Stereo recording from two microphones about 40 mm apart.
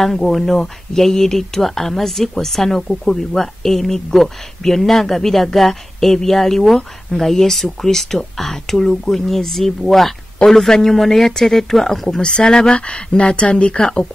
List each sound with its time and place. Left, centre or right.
0.0 s speech: centre
12.1 s speech: left